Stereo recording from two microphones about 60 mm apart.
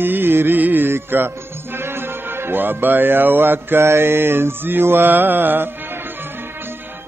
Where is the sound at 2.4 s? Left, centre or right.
Right.